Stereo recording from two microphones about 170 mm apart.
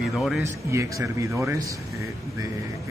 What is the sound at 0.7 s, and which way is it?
A man's voice, 20° right (ahead or behind).